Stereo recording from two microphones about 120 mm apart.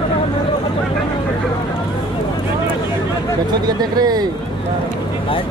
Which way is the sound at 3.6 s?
35° right (ahead or behind).